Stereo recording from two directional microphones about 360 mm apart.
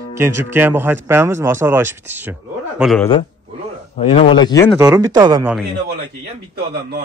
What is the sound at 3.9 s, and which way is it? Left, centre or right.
Speech, centre.